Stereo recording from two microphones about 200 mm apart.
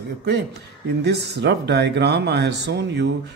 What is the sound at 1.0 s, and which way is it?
Speech, 55° right (ahead or behind).